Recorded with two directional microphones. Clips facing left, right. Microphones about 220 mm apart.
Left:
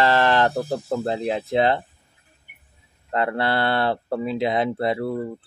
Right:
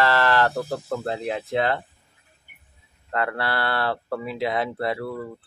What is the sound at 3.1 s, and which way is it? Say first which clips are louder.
Speech: left 4 dB; 25° left (ahead or behind).